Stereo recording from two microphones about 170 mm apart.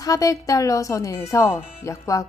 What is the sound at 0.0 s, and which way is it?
Speech, 20° left (ahead or behind).